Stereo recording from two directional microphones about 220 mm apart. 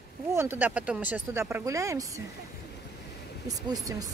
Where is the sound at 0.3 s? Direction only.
10° right (ahead or behind).